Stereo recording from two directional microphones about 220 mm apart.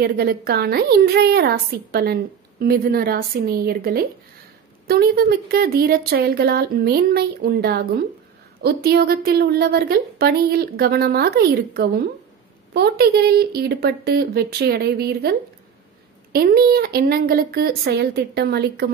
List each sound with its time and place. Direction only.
0.0 s a woman's voice: 45° right (ahead or behind)